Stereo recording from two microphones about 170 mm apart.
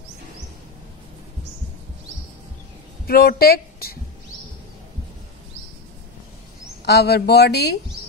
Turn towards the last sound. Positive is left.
turn(degrees=75)  # may be behind; listen again after turning